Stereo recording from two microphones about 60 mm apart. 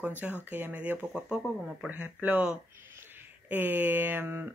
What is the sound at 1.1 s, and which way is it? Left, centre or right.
Speech, centre.